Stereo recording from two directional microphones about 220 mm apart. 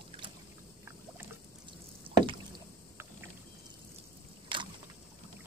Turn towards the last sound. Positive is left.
turn(degrees=-20)  # may be behind; listen again after turning